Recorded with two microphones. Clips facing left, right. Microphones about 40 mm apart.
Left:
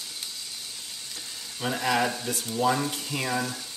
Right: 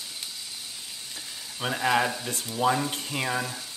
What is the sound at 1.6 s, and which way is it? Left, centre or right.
Frying, centre.